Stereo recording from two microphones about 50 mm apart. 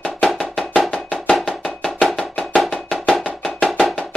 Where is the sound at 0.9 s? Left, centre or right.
Left.